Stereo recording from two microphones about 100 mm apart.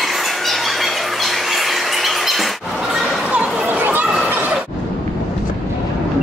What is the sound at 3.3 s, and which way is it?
Chatter, 10° right (ahead or behind).